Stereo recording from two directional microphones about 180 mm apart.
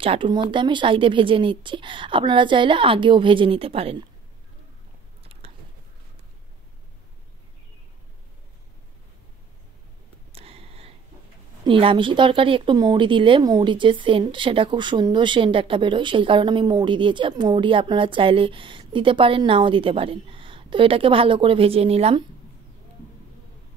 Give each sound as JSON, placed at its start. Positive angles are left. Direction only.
{"t": 0.0, "sound": "speech", "side_deg": -30}
{"t": 5.2, "sound": "biting", "side_deg": -35}
{"t": 10.3, "sound": "a sound", "side_deg": -35}
{"t": 11.6, "sound": "speech", "side_deg": -30}